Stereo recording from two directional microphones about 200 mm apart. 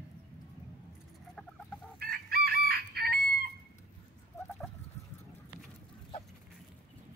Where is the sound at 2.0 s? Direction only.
50° right (ahead or behind).